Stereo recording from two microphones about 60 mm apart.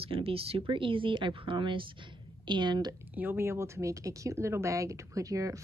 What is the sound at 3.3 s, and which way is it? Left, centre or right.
Speech, right.